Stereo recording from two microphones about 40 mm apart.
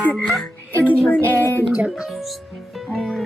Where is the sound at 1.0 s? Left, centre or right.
Left.